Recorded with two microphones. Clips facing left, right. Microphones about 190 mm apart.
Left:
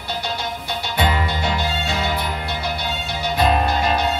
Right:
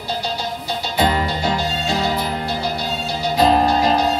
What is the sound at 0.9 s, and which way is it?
Music, 35° right (ahead or behind).